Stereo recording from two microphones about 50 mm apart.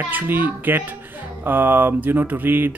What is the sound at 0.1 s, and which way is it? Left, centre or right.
A child's voice, right.